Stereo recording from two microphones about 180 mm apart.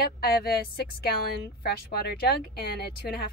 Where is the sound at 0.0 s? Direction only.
60° left (ahead or behind).